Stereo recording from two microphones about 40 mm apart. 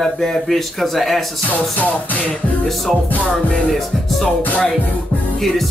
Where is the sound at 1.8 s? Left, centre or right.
Left.